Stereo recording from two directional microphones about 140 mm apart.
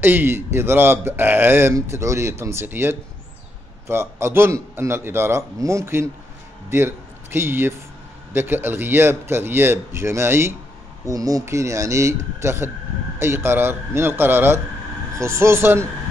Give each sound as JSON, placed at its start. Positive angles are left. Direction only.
{"t": 0.0, "sound": "a man's voice", "side_deg": -15}